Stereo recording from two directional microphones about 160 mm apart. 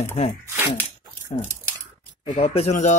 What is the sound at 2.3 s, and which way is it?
Speech, 40° left (ahead or behind).